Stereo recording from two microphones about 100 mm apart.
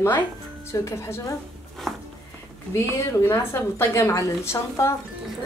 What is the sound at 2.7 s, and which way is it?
A woman's voice, 25° left (ahead or behind).